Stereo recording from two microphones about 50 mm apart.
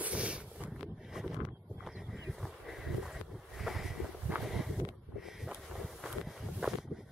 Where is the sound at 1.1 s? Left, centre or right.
Centre.